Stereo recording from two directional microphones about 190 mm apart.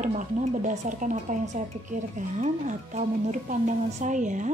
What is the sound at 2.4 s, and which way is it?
A woman's voice, 40° right (ahead or behind).